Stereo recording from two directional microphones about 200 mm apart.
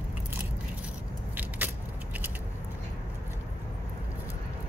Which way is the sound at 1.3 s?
10° right (ahead or behind).